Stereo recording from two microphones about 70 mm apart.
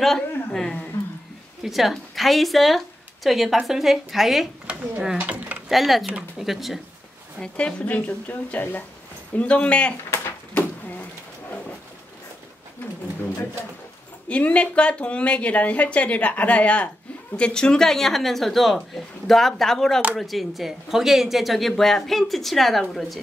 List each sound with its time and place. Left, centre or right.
0.5 s speech: centre
1.6 s speech: centre
4.6 s speech: centre
5.1 s a sound: right
5.7 s speech: centre
7.3 s speech: centre
14.3 s speech: centre